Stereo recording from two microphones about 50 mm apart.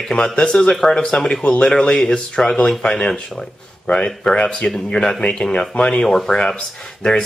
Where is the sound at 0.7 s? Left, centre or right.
Centre.